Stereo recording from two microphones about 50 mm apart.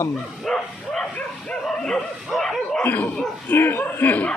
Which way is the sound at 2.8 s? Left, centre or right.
Left.